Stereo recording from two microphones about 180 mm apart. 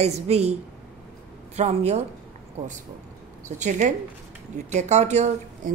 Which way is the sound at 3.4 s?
40° right (ahead or behind).